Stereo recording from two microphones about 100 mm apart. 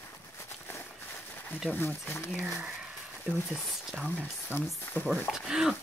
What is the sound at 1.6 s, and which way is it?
Speech, 20° left (ahead or behind).